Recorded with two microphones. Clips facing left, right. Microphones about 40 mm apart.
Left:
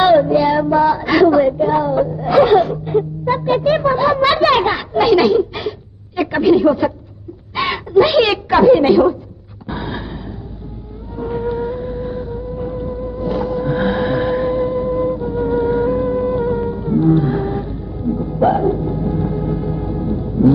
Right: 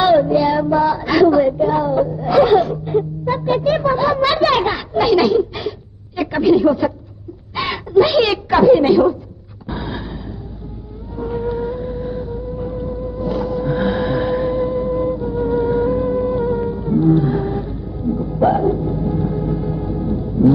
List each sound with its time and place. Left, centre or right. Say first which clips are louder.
0.2 s child singing: left 1 dB; centre
0.9 s a woman's voice: left 1 dB; centre
2.0 s speech: left 1 dB; centre
3.8 s a sound: left 2 dB; centre
6.3 s a woman's voice: left 1 dB; centre
9.7 s a sound: left 1 dB; centre
11.1 s music: left 1 dB; centre